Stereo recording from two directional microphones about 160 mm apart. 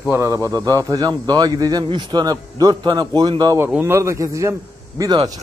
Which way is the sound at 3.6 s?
10° right (ahead or behind).